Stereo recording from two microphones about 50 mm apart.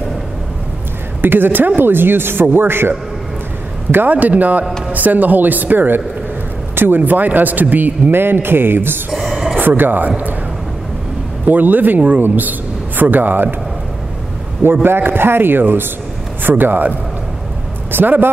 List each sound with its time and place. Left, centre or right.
1.2 s speech: right
3.9 s a man's voice: right
6.7 s a sound: right
7.0 s a man's voice: right
9.1 s a sound: centre
9.6 s speech: right
11.4 s a man's voice: right
14.6 s a man's voice: right
17.9 s a man's voice: right